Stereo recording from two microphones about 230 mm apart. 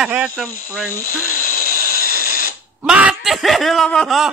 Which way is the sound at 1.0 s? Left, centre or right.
Left.